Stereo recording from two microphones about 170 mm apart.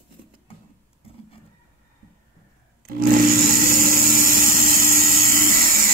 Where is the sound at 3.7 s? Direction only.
55° right (ahead or behind).